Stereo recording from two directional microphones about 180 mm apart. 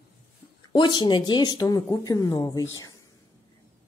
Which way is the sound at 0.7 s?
25° left (ahead or behind).